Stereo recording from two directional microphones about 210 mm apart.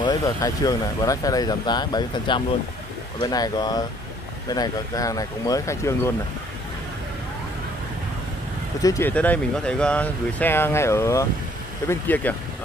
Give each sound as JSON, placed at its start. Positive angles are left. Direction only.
{"t": 0.0, "sound": "speech", "side_deg": 15}
{"t": 8.8, "sound": "speech", "side_deg": 10}